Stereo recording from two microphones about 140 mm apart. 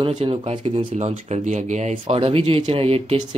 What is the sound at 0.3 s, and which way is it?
Speech, 40° right (ahead or behind).